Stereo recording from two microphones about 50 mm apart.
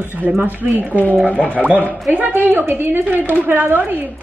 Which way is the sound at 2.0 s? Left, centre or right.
Right.